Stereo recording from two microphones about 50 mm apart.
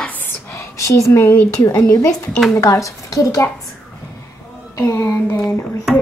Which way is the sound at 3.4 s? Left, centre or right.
Left.